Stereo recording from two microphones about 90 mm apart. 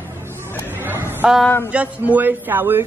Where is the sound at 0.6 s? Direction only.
20° right (ahead or behind).